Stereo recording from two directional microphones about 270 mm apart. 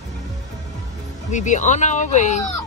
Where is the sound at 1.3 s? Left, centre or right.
Left.